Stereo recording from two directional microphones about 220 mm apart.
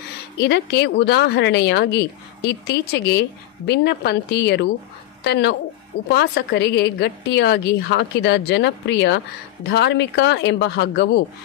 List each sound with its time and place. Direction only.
0.4 s a woman's voice: 50° left (ahead or behind)